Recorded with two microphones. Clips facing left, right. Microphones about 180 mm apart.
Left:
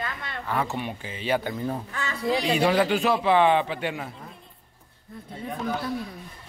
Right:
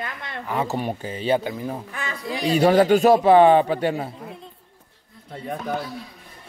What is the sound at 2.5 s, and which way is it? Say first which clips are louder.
Speech: right 8 dB; 40° right (ahead or behind).